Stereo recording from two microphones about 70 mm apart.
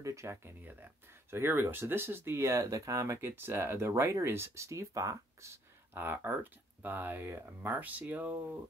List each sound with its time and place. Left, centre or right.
0.0 s speech: right
0.6 s speech: right
5.9 s speech: right